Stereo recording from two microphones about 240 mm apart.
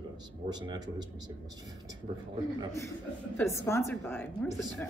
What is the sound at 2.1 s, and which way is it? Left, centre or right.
Speech, right.